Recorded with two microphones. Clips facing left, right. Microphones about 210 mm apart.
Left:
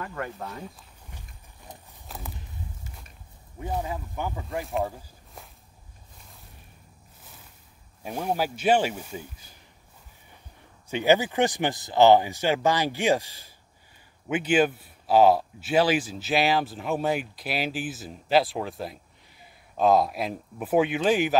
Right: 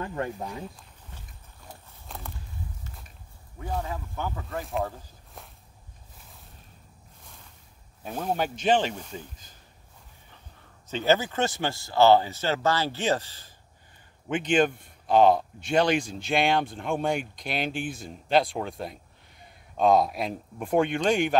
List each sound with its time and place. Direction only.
0.0 s speech: 25° right (ahead or behind)
0.4 s speech: 15° right (ahead or behind)
2.0 s walk: centre (ahead or behind)
3.5 s speech: 20° left (ahead or behind)
4.5 s speech: centre (ahead or behind)
8.0 s speech: 10° left (ahead or behind)
10.9 s speech: 15° left (ahead or behind)